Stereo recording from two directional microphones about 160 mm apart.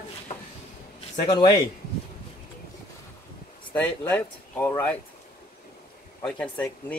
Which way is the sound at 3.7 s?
10° left (ahead or behind).